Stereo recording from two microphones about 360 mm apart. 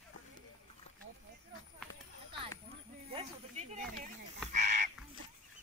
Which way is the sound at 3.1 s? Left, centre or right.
Centre.